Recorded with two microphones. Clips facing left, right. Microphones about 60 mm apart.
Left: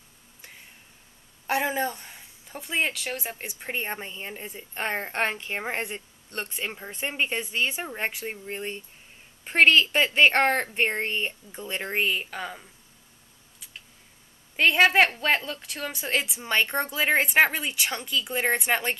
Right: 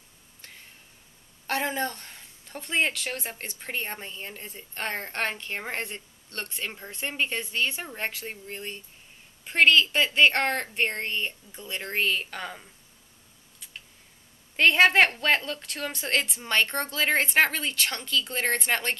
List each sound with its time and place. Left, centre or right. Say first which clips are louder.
1.5 s a woman's voice: left 2 dB; centre
14.6 s a woman's voice: even; centre